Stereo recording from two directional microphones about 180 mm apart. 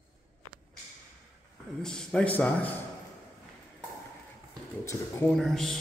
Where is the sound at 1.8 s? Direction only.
5° left (ahead or behind).